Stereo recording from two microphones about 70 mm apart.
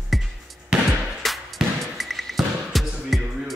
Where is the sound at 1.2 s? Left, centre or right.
Centre.